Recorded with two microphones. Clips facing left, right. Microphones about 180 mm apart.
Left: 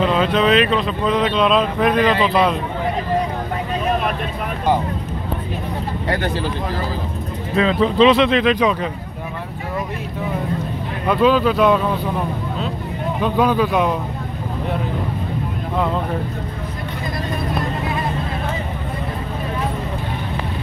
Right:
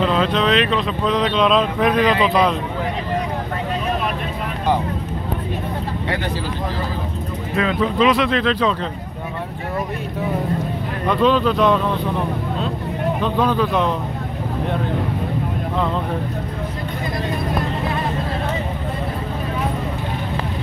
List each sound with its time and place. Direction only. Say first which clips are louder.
0.0 s speech: left 1 dB; 5° left (ahead or behind)
6.0 s speech: left 4 dB; 50° left (ahead or behind)
7.5 s speech: left 3 dB; 25° left (ahead or behind)
11.1 s speech: left 1 dB; 5° left (ahead or behind)
13.2 s speech: left 3 dB; 10° left (ahead or behind)